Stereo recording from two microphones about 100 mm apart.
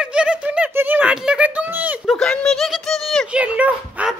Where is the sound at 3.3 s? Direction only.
15° right (ahead or behind).